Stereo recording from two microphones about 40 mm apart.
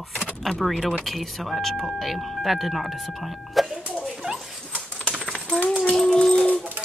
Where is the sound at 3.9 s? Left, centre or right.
Centre.